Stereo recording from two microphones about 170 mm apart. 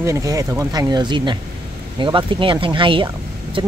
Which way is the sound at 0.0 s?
20° right (ahead or behind).